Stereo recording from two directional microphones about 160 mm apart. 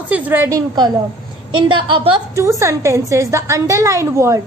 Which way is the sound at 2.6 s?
20° right (ahead or behind).